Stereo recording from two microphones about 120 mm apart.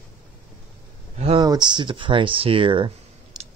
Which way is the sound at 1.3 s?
35° right (ahead or behind).